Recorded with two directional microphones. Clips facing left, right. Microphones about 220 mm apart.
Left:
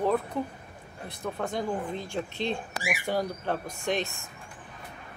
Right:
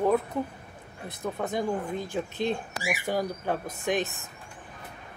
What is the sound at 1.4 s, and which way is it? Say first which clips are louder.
Speech: right 2 dB; 5° right (ahead or behind).